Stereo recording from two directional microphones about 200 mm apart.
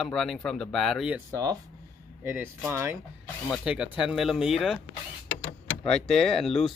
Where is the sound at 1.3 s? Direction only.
15° right (ahead or behind).